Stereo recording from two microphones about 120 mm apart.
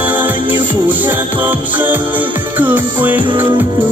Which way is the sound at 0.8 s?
15° right (ahead or behind).